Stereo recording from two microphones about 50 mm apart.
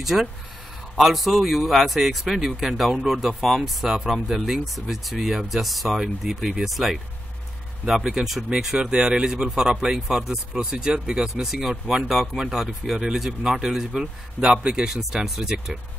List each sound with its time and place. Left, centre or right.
0.0 s speech: centre
8.5 s speech: centre
11.4 s speech: centre